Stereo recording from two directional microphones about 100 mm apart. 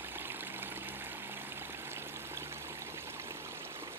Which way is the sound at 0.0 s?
20° right (ahead or behind).